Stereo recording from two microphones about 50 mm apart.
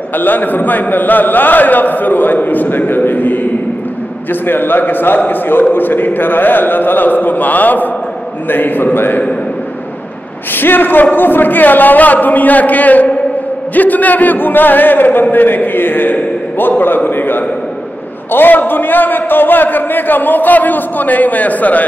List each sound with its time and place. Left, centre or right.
0.1 s a man's voice: left
10.5 s a man's voice: left